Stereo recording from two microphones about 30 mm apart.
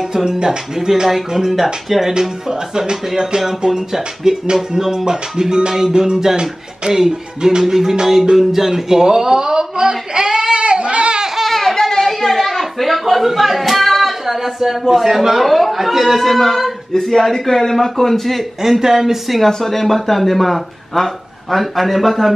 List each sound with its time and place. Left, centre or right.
0.1 s a man's voice: centre
0.7 s music: centre
3.2 s music: centre
4.7 s a man's voice: centre
6.9 s music: centre
8.4 s a man's voice: centre
10.5 s goat: right
11.4 s a sound: centre
15.0 s speech: centre
16.9 s a man's voice: centre
18.6 s music: centre
19.4 s speech: centre